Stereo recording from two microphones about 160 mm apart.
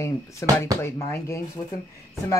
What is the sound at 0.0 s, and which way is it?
Speech, 15° left (ahead or behind).